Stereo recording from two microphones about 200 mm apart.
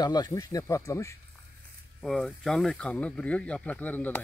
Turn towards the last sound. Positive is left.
turn(degrees=10)  # may be behind; listen again after turning